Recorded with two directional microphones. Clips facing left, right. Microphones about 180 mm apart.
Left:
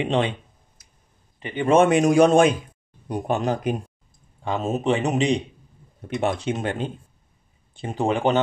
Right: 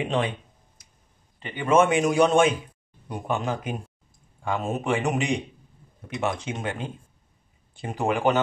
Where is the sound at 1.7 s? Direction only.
35° left (ahead or behind).